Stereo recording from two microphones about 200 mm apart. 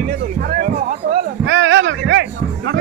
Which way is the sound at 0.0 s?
45° right (ahead or behind).